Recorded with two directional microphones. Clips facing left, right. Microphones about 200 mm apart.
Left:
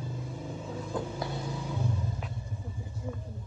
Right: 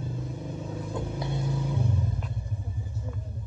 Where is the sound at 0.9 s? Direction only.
25° right (ahead or behind).